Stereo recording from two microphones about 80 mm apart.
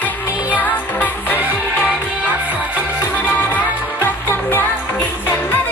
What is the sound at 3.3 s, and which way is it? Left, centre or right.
Music, left.